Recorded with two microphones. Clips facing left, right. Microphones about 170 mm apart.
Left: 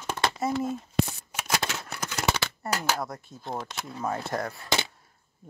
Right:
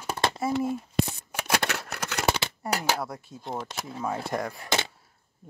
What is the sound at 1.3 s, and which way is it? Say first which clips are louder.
Scissors: right 2 dB; 60° right (ahead or behind).